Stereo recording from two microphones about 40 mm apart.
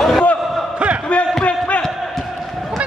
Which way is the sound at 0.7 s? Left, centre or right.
Right.